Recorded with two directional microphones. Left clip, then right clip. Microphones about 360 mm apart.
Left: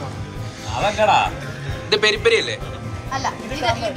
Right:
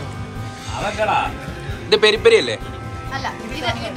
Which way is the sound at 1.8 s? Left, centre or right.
Centre.